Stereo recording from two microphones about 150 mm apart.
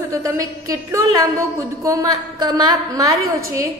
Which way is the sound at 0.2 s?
20° right (ahead or behind).